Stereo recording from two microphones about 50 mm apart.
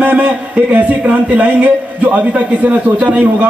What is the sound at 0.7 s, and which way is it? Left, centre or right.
A man's voice, right.